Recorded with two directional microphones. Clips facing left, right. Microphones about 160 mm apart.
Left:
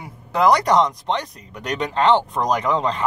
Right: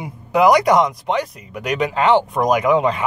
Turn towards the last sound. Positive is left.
turn(degrees=-10)  # may be behind; listen again after turning